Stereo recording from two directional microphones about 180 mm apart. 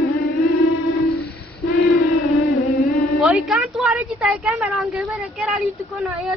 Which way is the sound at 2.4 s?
60° left (ahead or behind).